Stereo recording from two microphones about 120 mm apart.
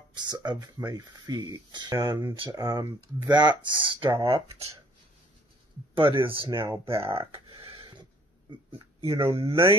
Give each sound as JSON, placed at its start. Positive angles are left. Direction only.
{"t": 0.1, "sound": "speech", "side_deg": -35}
{"t": 2.5, "sound": "speech", "side_deg": -25}
{"t": 3.3, "sound": "speech", "side_deg": -35}
{"t": 5.9, "sound": "speech", "side_deg": -45}
{"t": 6.4, "sound": "speech", "side_deg": -20}
{"t": 7.1, "sound": "a sound", "side_deg": -50}
{"t": 7.8, "sound": "a sound", "side_deg": -40}